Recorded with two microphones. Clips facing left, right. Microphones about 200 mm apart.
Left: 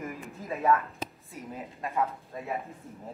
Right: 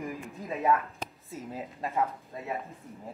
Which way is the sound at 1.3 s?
30° right (ahead or behind).